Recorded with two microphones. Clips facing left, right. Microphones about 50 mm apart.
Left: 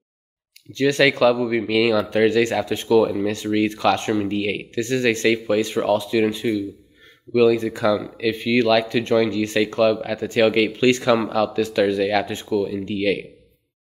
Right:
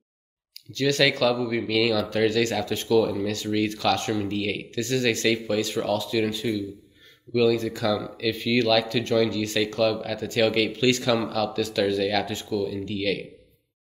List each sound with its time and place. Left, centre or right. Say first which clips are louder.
0.7 s speech: left 5 dB; left
3.0 s speech: left 4 dB; centre
3.3 s speech: left 5 dB; left